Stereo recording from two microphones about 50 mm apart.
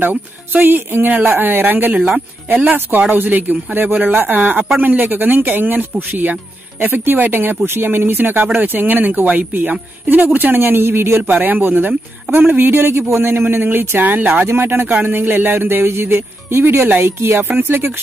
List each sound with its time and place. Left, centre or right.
0.0 s speech: right
11.2 s speech: right